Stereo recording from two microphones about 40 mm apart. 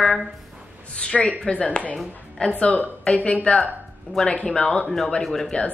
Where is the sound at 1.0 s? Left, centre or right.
Left.